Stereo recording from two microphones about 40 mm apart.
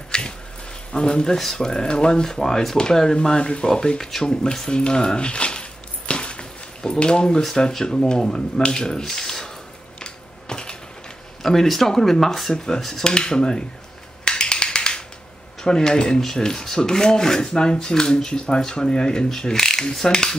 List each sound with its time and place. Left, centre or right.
0.1 s a sound: centre
0.9 s speech: left
1.4 s rub: centre
4.2 s speech: centre
9.9 s a sound: left
11.4 s rub: centre
14.2 s finger snapping: centre
15.6 s speech: centre
16.3 s rub: centre